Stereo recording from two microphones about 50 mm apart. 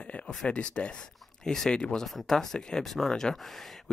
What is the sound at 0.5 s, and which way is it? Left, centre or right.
Speech, left.